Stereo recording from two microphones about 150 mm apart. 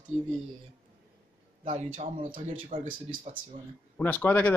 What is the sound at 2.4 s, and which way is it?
Speech, 35° right (ahead or behind).